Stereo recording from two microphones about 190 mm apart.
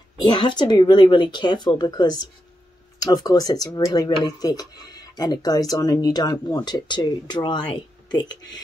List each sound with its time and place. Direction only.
0.2 s speech: 25° left (ahead or behind)